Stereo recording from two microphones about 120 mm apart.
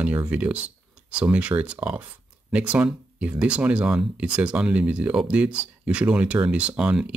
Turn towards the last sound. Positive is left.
turn(degrees=-10)  # may be behind; listen again after turning